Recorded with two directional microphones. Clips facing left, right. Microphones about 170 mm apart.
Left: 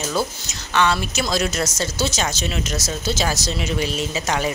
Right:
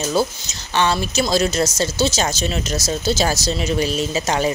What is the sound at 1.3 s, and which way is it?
Speech, 30° right (ahead or behind).